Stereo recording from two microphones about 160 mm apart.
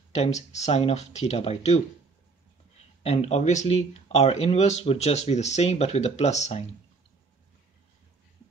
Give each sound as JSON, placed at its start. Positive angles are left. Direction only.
{"t": 0.1, "sound": "speech", "side_deg": 45}
{"t": 3.0, "sound": "speech", "side_deg": 40}